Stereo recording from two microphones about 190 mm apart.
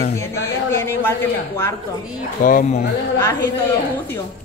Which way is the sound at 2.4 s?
45° left (ahead or behind).